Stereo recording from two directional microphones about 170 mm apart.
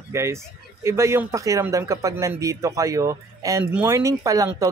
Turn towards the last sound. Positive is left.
turn(degrees=-20)  # may be behind; listen again after turning